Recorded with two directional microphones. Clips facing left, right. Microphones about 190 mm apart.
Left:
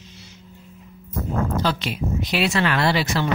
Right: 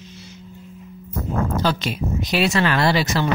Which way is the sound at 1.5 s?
40° right (ahead or behind).